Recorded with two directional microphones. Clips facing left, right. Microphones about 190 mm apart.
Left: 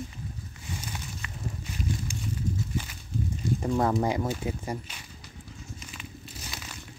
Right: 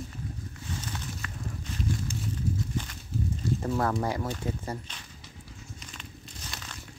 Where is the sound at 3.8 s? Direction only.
20° left (ahead or behind).